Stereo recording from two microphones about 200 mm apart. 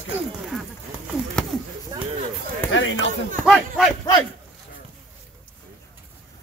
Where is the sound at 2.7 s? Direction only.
70° left (ahead or behind).